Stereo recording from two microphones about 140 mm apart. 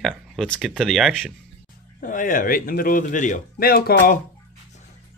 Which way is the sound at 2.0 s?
70° left (ahead or behind).